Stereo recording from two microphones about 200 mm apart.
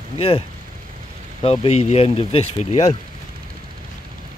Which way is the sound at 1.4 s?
30° left (ahead or behind).